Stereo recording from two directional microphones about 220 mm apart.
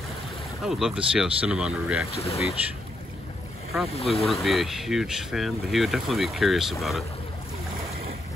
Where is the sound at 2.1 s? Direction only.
25° left (ahead or behind).